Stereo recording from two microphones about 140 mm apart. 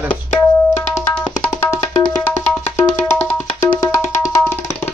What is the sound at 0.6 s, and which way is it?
Tabla, 20° left (ahead or behind).